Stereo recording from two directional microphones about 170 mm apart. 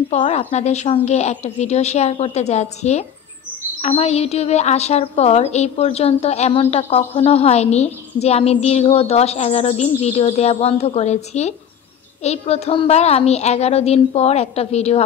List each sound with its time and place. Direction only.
0.1 s a woman's voice: 40° left (ahead or behind)
12.2 s a woman's voice: 40° left (ahead or behind)